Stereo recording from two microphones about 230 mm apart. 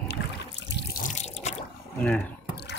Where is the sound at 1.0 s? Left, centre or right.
Left.